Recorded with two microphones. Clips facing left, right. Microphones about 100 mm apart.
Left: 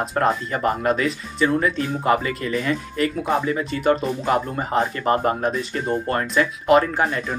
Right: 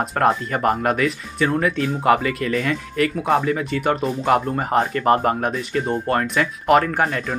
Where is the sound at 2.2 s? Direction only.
30° left (ahead or behind).